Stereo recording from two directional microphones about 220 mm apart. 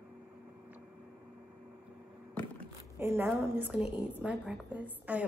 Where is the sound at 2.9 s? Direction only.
10° right (ahead or behind).